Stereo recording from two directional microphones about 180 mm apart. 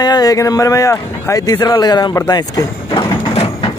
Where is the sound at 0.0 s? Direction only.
20° left (ahead or behind).